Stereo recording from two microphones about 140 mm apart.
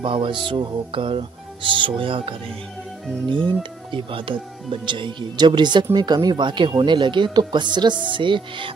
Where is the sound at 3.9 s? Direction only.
40° right (ahead or behind).